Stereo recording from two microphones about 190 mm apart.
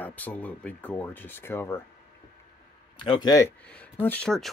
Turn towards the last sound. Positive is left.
turn(degrees=5)  # may be behind; listen again after turning